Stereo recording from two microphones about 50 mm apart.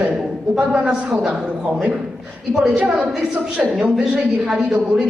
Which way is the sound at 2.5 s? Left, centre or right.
Centre.